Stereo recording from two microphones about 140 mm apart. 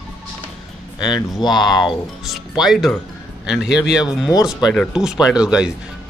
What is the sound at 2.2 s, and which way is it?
Speech, centre (ahead or behind).